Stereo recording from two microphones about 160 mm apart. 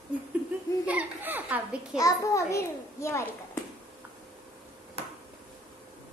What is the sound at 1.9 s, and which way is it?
A child's voice, 20° left (ahead or behind).